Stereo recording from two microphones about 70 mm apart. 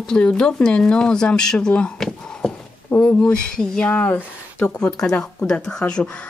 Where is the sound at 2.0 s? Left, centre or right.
Centre.